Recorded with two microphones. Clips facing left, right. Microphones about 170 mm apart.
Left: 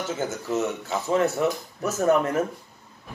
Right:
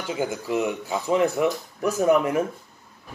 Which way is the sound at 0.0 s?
15° right (ahead or behind).